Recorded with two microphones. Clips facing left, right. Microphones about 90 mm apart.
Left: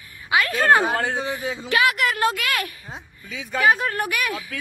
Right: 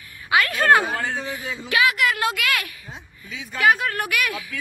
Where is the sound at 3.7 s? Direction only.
25° left (ahead or behind).